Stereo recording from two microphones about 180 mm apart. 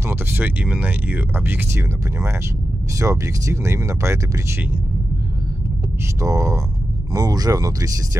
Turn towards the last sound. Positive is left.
turn(degrees=-20)  # may be behind; listen again after turning